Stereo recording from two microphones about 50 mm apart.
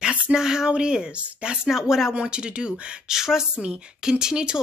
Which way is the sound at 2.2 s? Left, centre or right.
Centre.